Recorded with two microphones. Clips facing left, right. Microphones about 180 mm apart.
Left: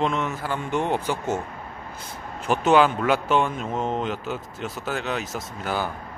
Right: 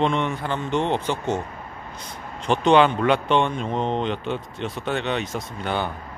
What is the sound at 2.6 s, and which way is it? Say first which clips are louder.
A man's voice: right 2 dB; 5° left (ahead or behind).